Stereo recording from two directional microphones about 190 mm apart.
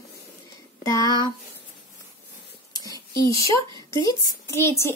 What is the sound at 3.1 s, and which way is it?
A woman's voice, 15° left (ahead or behind).